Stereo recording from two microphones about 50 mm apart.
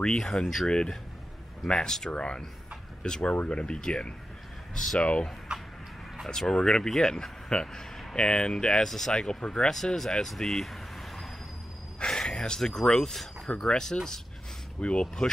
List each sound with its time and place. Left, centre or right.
0.0 s speech: centre
0.7 s speech: centre
5.0 s speech: left
5.5 s a sound: centre
6.2 s speech: centre
12.0 s speech: centre